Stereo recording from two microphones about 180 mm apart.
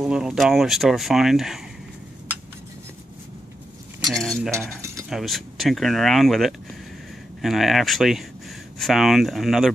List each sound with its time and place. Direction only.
0.0 s speech: 5° right (ahead or behind)
4.1 s speech: centre (ahead or behind)
4.6 s mechanisms: 15° right (ahead or behind)
5.1 s speech: centre (ahead or behind)